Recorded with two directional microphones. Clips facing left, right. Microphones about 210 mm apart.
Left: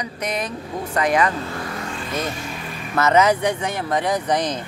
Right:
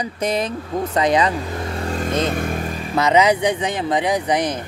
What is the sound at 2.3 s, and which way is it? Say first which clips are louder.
Vehicle: right 7 dB; 55° right (ahead or behind).